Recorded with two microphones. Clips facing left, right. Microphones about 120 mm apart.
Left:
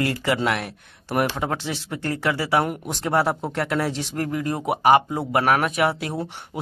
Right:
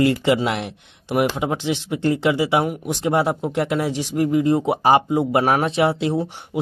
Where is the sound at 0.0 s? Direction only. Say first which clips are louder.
Right 5 dB; 25° right (ahead or behind).